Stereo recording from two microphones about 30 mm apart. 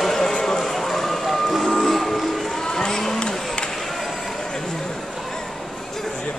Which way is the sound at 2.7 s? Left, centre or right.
Left.